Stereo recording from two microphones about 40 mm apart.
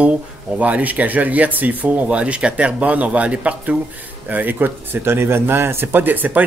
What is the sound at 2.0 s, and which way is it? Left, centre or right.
Speech, right.